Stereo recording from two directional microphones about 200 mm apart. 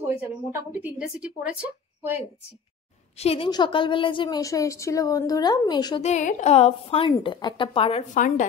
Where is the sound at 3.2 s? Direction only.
30° left (ahead or behind).